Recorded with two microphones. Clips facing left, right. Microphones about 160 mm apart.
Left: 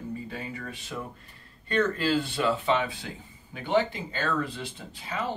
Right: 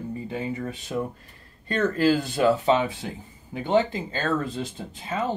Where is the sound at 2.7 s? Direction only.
25° right (ahead or behind).